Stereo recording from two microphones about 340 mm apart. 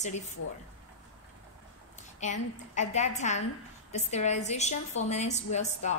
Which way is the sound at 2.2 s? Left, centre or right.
Left.